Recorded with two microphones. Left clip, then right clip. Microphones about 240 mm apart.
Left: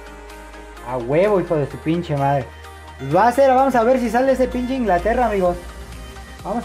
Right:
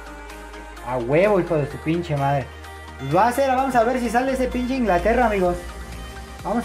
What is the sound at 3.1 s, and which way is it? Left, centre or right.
Speech, left.